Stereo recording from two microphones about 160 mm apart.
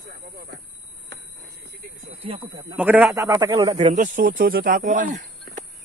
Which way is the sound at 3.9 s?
55° right (ahead or behind).